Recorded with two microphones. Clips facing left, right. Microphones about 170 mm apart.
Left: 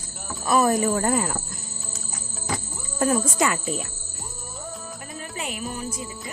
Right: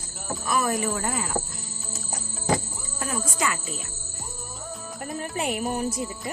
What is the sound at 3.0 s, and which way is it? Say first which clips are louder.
Speech: left 7 dB; 45° left (ahead or behind).